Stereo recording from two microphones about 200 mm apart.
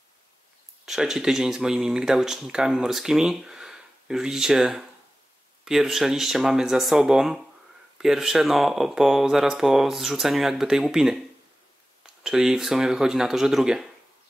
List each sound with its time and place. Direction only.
0.8 s speech: centre (ahead or behind)
12.2 s speech: 5° right (ahead or behind)